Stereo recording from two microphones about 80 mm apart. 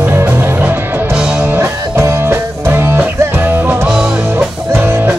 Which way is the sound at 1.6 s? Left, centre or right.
Right.